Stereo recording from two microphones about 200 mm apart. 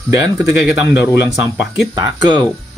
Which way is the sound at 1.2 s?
10° right (ahead or behind).